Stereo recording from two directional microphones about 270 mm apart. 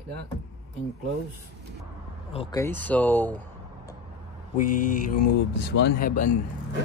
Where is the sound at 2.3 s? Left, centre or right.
Centre.